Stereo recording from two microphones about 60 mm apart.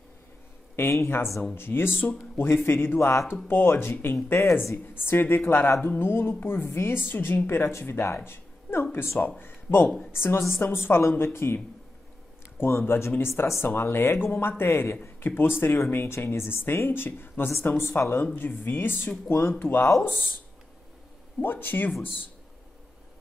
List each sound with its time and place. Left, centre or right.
0.7 s speech: left
21.4 s speech: left